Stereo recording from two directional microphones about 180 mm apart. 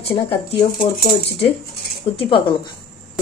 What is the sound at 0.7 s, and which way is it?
Speech, 55° left (ahead or behind).